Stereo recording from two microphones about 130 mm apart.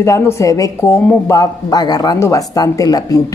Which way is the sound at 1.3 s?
30° left (ahead or behind).